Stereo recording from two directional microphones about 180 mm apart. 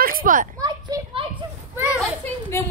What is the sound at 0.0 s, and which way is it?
Children playing, 50° right (ahead or behind).